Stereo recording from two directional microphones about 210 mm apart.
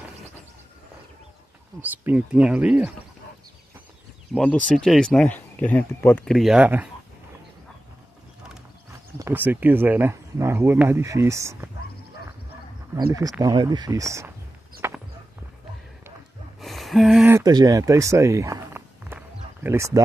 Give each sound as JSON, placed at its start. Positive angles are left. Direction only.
{"t": 1.8, "sound": "speech", "side_deg": -10}
{"t": 4.3, "sound": "speech", "side_deg": 5}
{"t": 9.2, "sound": "speech", "side_deg": -10}
{"t": 12.9, "sound": "speech", "side_deg": -15}
{"t": 14.8, "sound": "walk", "side_deg": -10}
{"t": 16.6, "sound": "a sound", "side_deg": 0}
{"t": 17.4, "sound": "speech", "side_deg": -20}